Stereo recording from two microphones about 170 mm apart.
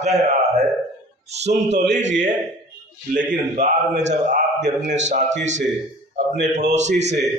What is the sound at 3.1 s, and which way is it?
A man's voice, 45° right (ahead or behind).